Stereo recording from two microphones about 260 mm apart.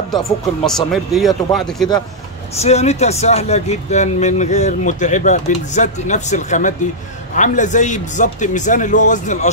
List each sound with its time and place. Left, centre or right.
0.7 s speech: centre
2.6 s speech: left